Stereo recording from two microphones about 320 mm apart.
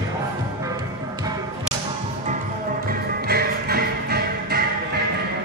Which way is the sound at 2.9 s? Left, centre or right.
Right.